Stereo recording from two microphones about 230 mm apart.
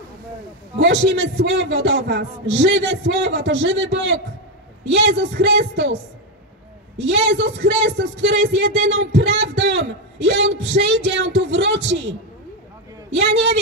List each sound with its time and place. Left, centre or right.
0.7 s speech: right
7.1 s speech: right